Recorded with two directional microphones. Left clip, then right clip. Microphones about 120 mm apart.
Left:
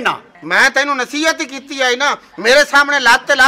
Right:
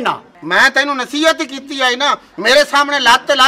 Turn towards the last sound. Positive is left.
turn(degrees=0)  # may be behind; listen again after turning